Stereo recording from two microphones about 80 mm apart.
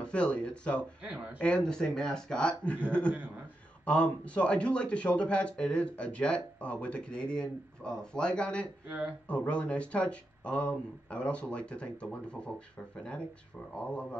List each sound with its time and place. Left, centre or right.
0.0 s a man's voice: centre
1.0 s speech: centre
1.4 s a man's voice: centre
8.8 s speech: centre
9.3 s a man's voice: centre